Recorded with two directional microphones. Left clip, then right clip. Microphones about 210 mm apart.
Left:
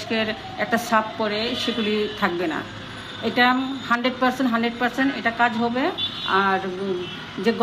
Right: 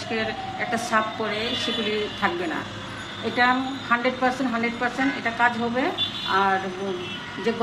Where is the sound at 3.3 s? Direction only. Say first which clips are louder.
Left 2 dB; 35° left (ahead or behind).